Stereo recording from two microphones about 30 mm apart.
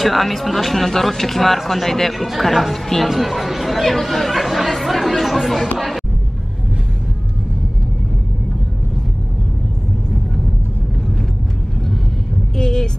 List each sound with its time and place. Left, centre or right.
0.0 s speech: centre
3.8 s speech: centre
12.5 s vehicle: left